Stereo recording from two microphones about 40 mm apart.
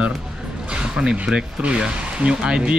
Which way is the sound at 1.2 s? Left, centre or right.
Right.